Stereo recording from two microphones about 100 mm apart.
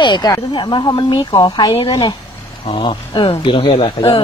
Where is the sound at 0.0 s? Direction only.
50° left (ahead or behind).